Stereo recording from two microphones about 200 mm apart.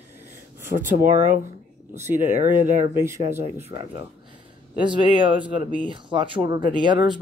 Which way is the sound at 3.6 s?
25° right (ahead or behind).